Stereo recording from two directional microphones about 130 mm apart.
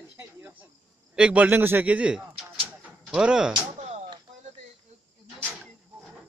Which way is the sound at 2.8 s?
5° right (ahead or behind).